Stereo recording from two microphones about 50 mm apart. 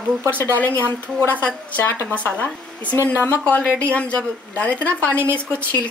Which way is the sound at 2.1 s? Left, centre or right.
Left.